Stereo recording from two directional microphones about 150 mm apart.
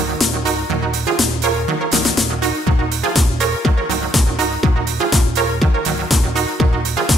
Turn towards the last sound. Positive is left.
turn(degrees=0)  # may be behind; listen again after turning